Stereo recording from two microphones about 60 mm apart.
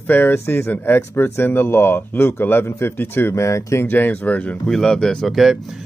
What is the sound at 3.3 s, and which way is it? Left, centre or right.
Speech, left.